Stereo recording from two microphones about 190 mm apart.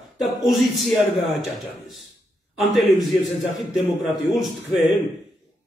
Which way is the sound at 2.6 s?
Centre (ahead or behind).